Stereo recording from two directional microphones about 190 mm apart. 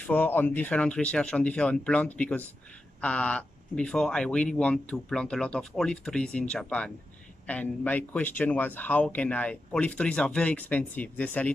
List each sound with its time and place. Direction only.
0.0 s speech: 10° left (ahead or behind)